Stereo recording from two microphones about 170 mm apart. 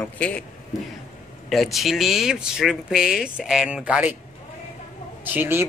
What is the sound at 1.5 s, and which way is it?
Speech, centre (ahead or behind).